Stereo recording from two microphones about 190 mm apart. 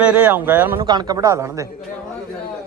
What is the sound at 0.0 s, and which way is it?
Speech, 5° right (ahead or behind).